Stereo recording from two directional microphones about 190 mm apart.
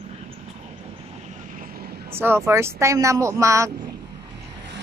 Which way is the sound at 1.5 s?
50° right (ahead or behind).